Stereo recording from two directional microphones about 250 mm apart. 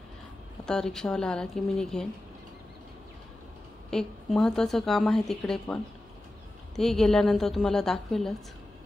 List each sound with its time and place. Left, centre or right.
0.7 s a woman's voice: centre
3.9 s a woman's voice: centre